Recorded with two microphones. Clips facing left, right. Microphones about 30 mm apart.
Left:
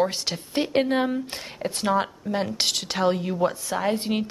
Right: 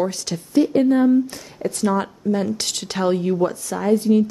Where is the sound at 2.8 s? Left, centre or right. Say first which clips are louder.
Right 4 dB; centre.